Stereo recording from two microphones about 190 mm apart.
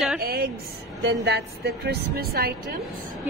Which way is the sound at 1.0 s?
60° right (ahead or behind).